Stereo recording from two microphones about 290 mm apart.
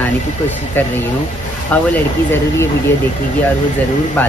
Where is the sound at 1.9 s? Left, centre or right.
Centre.